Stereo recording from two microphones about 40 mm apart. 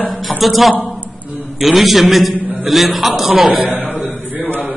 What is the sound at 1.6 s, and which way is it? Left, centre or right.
Speech, centre.